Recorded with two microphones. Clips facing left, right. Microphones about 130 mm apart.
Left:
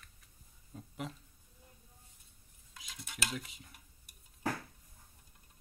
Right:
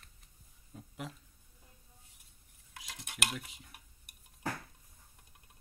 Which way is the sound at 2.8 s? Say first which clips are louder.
Right 2 dB; 65° right (ahead or behind).